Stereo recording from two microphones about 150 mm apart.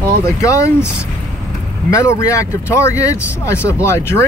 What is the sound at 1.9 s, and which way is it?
Speech, 20° left (ahead or behind).